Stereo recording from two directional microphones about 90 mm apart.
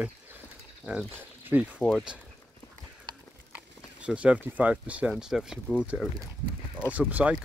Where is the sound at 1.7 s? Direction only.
15° left (ahead or behind).